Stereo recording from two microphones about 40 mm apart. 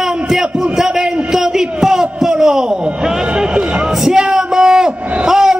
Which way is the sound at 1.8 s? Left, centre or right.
Centre.